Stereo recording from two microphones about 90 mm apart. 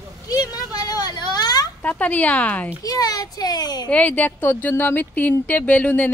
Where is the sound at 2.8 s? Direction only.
45° left (ahead or behind).